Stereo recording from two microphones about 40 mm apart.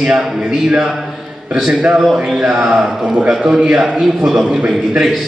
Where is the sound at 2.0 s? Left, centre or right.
Centre.